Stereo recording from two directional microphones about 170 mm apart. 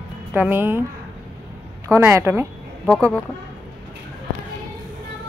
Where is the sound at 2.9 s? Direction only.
10° left (ahead or behind).